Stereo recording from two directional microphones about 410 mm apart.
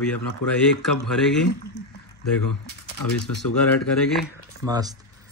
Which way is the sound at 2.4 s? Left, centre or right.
Left.